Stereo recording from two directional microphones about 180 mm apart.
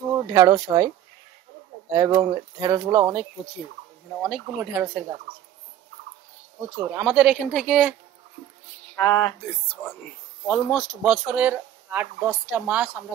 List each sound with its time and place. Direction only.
0.3 s speech: 20° right (ahead or behind)
7.0 s speech: 5° right (ahead or behind)
8.9 s speech: 15° left (ahead or behind)
11.0 s speech: 5° right (ahead or behind)